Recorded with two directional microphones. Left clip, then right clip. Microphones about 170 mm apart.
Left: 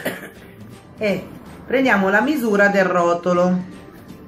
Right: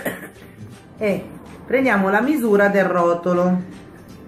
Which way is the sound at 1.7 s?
5° right (ahead or behind).